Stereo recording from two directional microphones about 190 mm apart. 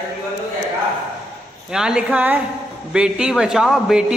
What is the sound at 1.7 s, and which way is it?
A man's voice, 5° right (ahead or behind).